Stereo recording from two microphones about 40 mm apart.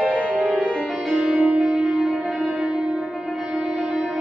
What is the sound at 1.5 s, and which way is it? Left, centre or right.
Music, centre.